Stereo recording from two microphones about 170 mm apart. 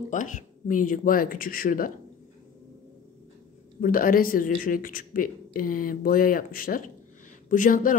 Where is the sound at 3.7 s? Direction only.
55° left (ahead or behind).